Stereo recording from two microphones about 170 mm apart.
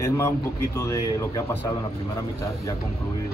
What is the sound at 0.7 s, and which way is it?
Speech, 20° left (ahead or behind).